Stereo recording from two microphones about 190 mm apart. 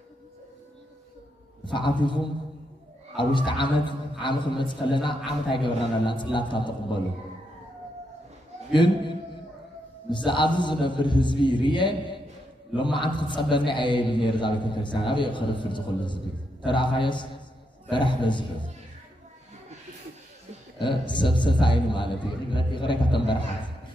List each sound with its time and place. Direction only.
1.6 s a man's voice: 25° left (ahead or behind)
8.7 s a man's voice: 25° left (ahead or behind)
20.8 s a man's voice: 25° left (ahead or behind)